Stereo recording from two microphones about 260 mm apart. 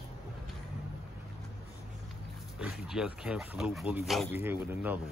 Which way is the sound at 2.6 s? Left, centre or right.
Centre.